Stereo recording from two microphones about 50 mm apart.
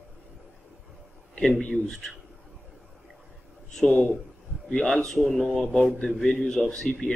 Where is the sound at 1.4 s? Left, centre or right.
Centre.